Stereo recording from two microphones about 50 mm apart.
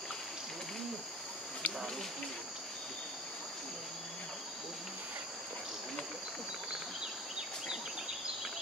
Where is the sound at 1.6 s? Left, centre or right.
Left.